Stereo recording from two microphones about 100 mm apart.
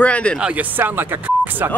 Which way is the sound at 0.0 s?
10° left (ahead or behind).